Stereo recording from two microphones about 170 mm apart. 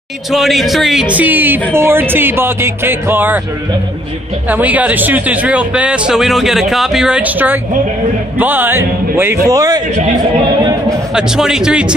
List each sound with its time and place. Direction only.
0.3 s speech: centre (ahead or behind)
4.5 s a man's voice: 10° right (ahead or behind)
11.1 s a man's voice: 5° right (ahead or behind)